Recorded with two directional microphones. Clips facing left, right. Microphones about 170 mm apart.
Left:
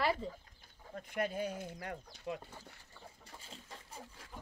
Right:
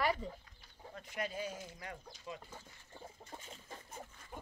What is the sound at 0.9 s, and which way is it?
Speech, 55° left (ahead or behind).